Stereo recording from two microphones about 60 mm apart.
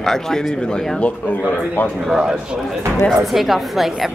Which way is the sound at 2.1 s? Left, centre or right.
Centre.